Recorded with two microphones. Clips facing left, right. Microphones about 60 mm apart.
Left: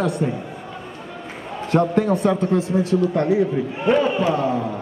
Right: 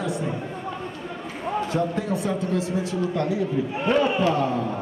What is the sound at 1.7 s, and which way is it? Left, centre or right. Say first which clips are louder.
Speech: left 12 dB; left.